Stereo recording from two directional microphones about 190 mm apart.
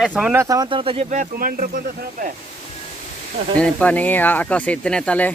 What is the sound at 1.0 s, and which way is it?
Speech, 40° right (ahead or behind).